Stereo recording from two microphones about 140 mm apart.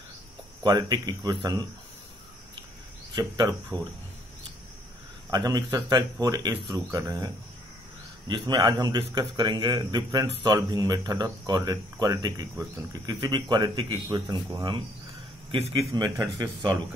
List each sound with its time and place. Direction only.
0.7 s a man's voice: 25° right (ahead or behind)
3.2 s a man's voice: 30° right (ahead or behind)
5.3 s a man's voice: 25° right (ahead or behind)
8.3 s a man's voice: 30° right (ahead or behind)
16.0 s a man's voice: 25° right (ahead or behind)